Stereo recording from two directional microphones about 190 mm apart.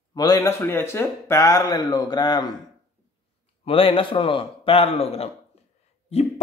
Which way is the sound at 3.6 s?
30° left (ahead or behind).